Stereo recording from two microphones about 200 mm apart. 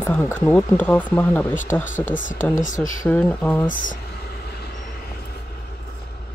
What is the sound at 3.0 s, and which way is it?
Speech, 5° left (ahead or behind).